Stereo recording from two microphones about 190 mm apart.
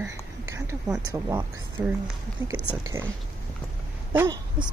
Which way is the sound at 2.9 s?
10° right (ahead or behind).